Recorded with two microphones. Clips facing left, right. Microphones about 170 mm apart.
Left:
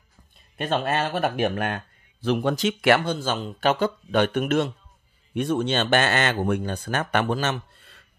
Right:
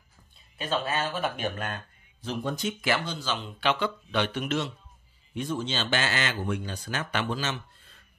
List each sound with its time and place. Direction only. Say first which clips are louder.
0.6 s a man's voice: left 5 dB; 60° left (ahead or behind)
5.3 s a man's voice: left 7 dB; 65° left (ahead or behind)